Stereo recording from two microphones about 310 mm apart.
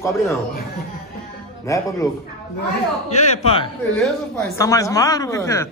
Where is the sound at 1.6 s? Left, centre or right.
Centre.